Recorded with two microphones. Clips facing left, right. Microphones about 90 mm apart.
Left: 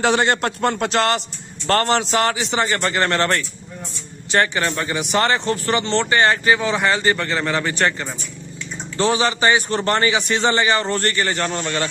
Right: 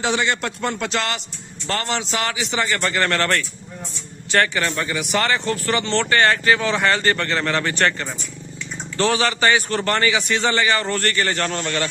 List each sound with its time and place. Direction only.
0.0 s a man's voice: 45° left (ahead or behind); by 8.1 s 10° left (ahead or behind)
8.9 s speech: 20° left (ahead or behind)